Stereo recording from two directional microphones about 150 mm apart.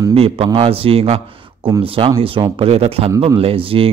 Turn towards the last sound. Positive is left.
turn(degrees=-40)  # may be behind; listen again after turning